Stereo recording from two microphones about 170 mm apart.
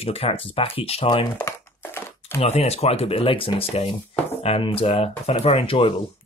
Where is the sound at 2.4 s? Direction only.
40° left (ahead or behind).